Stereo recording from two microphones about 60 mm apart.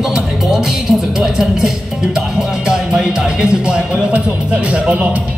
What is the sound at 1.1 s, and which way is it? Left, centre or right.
Speech, centre.